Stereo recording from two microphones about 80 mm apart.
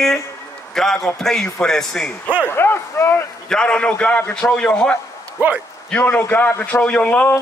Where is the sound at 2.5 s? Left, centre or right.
Left.